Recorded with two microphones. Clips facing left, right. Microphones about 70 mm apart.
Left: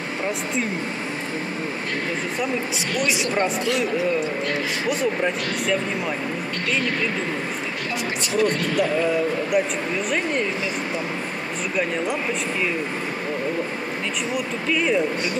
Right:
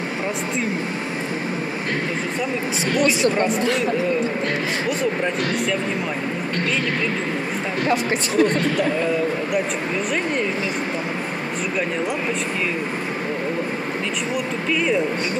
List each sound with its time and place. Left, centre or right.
4.8 s speech: centre
8.4 s speech: right
14.3 s speech: centre